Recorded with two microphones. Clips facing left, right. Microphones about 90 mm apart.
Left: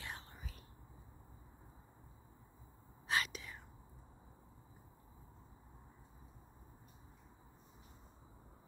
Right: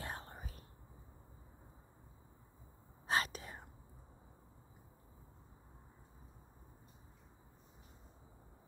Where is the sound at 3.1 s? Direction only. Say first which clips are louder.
Right 2 dB; 40° right (ahead or behind).